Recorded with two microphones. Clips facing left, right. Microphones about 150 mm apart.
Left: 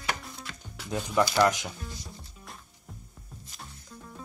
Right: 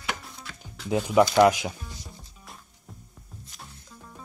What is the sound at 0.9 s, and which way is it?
Speech, 15° right (ahead or behind).